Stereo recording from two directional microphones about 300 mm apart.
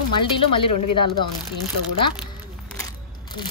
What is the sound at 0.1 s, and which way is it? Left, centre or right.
Speech, centre.